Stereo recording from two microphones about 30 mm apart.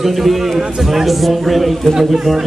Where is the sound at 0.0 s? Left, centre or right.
Centre.